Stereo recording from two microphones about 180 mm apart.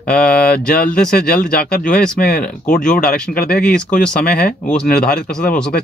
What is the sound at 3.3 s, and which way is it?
Speech, 60° left (ahead or behind).